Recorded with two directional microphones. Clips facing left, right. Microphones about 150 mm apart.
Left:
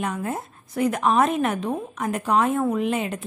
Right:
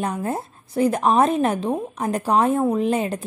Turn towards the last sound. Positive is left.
turn(degrees=-35)  # may be behind; listen again after turning